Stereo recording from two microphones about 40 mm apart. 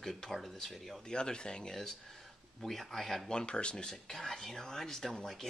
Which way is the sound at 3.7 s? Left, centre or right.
Centre.